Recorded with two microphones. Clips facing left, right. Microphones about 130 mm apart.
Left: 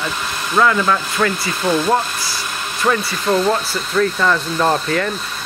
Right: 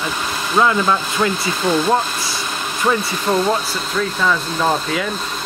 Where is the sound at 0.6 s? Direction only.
20° right (ahead or behind).